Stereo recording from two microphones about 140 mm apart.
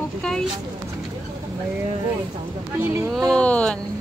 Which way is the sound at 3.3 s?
10° left (ahead or behind).